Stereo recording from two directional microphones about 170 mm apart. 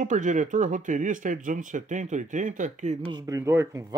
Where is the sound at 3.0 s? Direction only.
20° right (ahead or behind).